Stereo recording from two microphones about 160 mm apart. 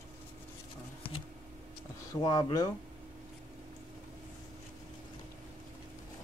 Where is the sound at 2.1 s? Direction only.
25° left (ahead or behind).